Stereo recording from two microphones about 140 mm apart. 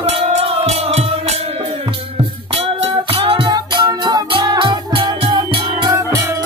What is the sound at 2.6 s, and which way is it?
Music, 45° right (ahead or behind).